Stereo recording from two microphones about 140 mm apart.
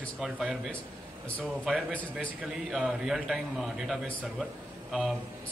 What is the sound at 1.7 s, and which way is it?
A man's voice, centre (ahead or behind).